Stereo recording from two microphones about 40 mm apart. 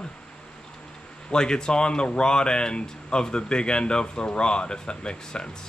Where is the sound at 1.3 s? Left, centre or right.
Left.